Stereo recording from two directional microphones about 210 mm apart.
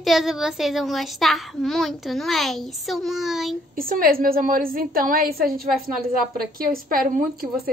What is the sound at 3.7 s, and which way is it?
A woman's voice, 40° right (ahead or behind).